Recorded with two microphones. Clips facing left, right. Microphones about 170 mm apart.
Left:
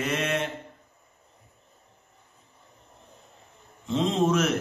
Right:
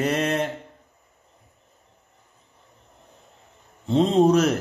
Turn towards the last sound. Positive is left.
turn(degrees=-35)  # may be behind; listen again after turning